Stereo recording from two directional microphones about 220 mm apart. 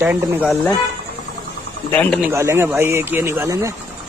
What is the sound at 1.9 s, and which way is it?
Speech, 5° left (ahead or behind).